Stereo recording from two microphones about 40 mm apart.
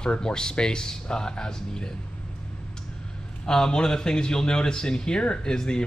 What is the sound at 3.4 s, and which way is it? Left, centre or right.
Speech, centre.